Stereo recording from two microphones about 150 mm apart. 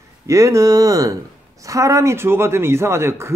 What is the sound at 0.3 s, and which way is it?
A woman's voice, 20° right (ahead or behind).